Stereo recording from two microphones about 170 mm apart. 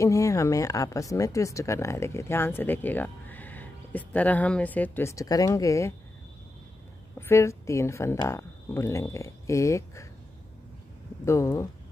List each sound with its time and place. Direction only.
0.0 s speech: 20° left (ahead or behind)
7.2 s speech: 15° left (ahead or behind)
11.2 s speech: 15° left (ahead or behind)